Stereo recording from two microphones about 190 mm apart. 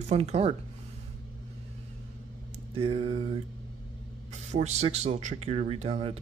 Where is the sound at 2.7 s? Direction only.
30° right (ahead or behind).